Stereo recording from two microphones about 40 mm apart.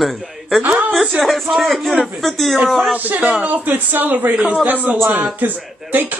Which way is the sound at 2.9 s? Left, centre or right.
Right.